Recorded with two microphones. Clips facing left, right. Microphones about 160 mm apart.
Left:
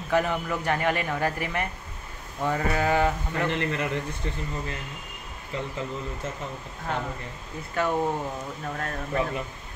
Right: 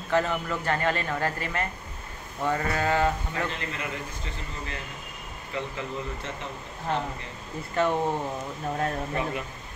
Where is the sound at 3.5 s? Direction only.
60° left (ahead or behind).